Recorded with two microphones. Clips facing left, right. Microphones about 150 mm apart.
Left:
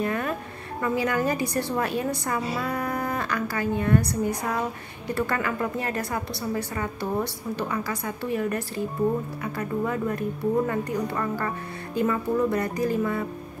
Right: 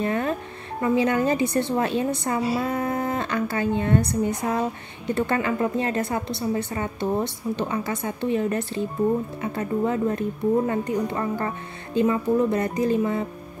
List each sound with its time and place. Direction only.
0.0 s a woman's voice: 25° right (ahead or behind)